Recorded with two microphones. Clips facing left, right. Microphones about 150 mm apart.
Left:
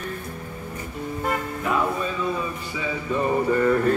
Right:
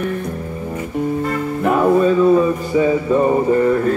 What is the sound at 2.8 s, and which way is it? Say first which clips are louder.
Music: right 11 dB; 40° right (ahead or behind).